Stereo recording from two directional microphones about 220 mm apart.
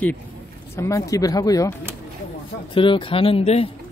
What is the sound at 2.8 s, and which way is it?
Speech, 25° left (ahead or behind).